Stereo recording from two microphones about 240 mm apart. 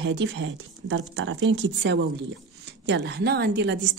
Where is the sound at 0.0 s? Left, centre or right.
Right.